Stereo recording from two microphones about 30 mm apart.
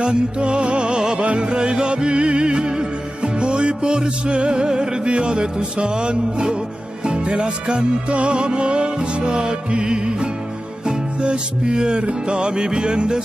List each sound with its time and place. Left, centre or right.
0.0 s music: right